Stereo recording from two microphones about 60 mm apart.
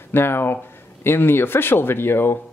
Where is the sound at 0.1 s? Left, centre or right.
Left.